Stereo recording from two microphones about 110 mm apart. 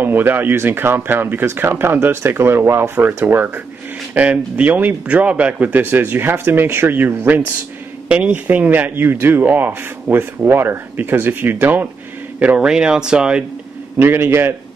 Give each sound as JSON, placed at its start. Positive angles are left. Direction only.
{"t": 0.0, "sound": "speech", "side_deg": -20}
{"t": 13.9, "sound": "speech", "side_deg": -20}